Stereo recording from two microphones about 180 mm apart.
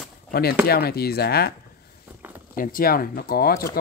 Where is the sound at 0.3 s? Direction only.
60° left (ahead or behind).